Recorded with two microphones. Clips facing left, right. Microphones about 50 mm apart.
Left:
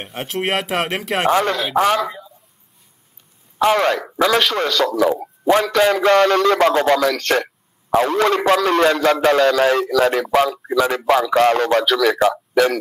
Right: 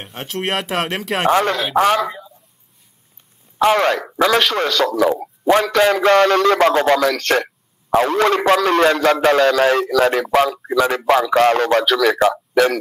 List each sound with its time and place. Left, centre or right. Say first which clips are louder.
0.0 s speech: left 1 dB; centre
1.3 s a man's voice: right 2 dB; right
3.5 s a man's voice: right 1 dB; right